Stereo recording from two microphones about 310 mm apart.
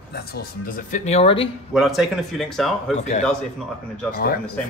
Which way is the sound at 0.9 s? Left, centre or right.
Left.